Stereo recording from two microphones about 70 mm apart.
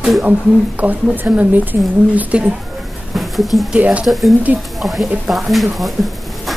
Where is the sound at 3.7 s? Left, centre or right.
Centre.